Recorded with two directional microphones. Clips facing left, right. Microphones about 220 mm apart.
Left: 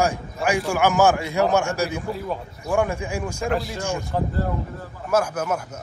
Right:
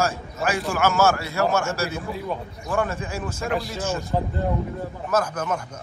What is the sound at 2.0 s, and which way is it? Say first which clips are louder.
Speech: left 1 dB; centre (ahead or behind).